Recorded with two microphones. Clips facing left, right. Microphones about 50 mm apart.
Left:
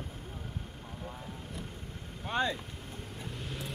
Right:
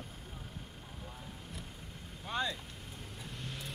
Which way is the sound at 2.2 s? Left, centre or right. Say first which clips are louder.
Left 5 dB; left.